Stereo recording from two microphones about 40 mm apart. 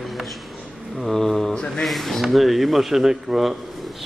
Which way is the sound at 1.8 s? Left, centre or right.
Centre.